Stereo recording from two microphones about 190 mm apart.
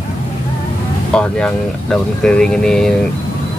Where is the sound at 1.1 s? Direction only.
5° left (ahead or behind).